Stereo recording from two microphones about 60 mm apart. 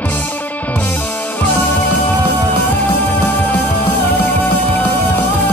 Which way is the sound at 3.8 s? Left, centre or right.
Left.